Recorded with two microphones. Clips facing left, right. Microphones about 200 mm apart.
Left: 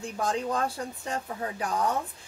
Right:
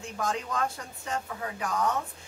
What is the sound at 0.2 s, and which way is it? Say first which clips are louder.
Speech: left 2 dB; 35° left (ahead or behind).